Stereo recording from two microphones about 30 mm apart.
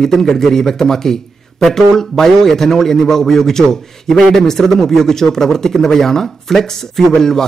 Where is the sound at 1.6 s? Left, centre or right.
Centre.